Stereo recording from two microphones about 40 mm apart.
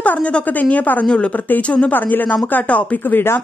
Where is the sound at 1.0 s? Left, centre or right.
Left.